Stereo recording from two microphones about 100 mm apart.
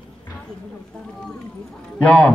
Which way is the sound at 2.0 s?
10° left (ahead or behind).